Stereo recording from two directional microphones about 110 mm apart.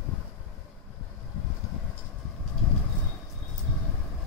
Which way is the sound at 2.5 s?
5° left (ahead or behind).